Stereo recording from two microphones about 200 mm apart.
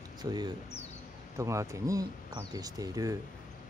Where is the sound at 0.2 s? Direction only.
20° right (ahead or behind).